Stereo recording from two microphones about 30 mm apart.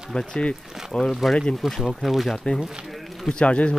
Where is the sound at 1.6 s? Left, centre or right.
Centre.